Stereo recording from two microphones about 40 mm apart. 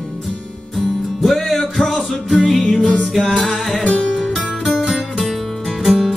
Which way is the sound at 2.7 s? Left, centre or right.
Centre.